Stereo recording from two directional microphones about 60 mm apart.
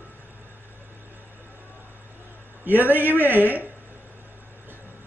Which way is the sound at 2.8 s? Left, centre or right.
Right.